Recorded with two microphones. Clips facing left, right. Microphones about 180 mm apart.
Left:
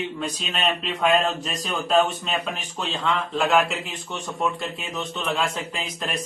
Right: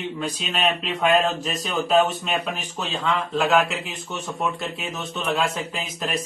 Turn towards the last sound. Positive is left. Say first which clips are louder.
# right 2 dB
turn(degrees=-5)  # may be behind; listen again after turning